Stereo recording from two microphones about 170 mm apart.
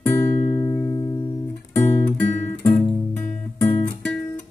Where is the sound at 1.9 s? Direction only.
10° left (ahead or behind).